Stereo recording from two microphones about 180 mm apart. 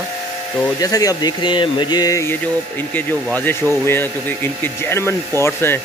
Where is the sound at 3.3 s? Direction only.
10° left (ahead or behind).